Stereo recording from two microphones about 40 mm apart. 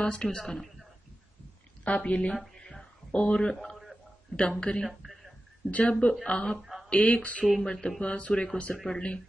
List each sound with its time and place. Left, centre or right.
0.0 s speech: left
1.9 s speech: left
6.9 s a sound: left
7.2 s speech: left
7.6 s speech: left
8.7 s speech: centre